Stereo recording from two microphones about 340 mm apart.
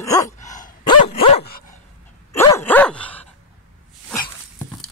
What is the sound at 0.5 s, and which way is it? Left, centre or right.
Dog, centre.